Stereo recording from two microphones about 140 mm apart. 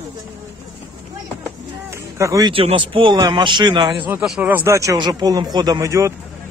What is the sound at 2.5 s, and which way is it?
A man's voice, 40° right (ahead or behind).